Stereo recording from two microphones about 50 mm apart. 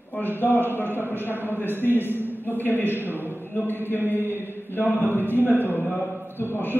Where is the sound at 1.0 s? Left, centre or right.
Left.